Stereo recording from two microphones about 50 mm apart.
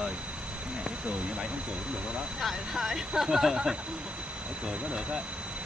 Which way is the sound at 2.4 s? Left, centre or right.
Centre.